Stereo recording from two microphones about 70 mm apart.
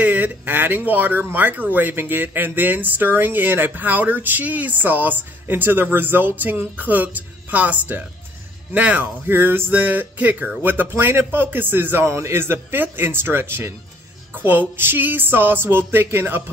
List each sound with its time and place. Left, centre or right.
0.0 s a man's voice: right